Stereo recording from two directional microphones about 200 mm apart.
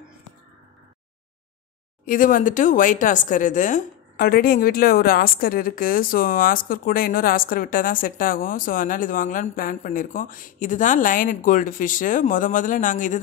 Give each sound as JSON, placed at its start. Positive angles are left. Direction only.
{"t": 2.0, "sound": "a woman's voice", "side_deg": 40}